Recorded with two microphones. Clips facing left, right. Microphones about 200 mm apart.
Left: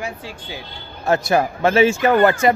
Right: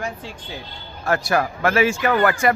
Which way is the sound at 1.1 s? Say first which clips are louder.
Left 3 dB; 20° left (ahead or behind).